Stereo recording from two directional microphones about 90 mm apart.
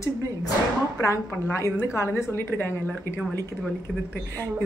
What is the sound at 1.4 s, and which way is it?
A woman's voice, 30° left (ahead or behind).